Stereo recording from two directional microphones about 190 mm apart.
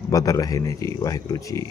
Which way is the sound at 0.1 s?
20° left (ahead or behind).